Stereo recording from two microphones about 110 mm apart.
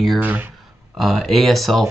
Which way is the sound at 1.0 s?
Centre (ahead or behind).